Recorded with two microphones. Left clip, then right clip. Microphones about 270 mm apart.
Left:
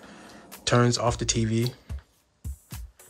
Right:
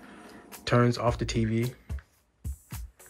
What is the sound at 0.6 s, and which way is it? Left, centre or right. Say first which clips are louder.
Speech: left 2 dB; centre.